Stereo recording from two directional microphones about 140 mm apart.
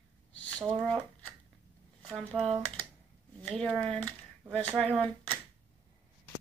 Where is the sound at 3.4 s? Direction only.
5° left (ahead or behind).